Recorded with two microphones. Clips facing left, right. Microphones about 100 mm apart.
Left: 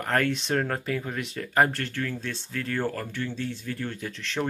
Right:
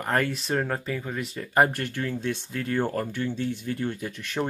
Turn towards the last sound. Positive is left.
turn(degrees=-15)  # may be behind; listen again after turning